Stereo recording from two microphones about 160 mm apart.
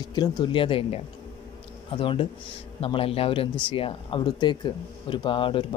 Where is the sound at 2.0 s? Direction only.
35° left (ahead or behind).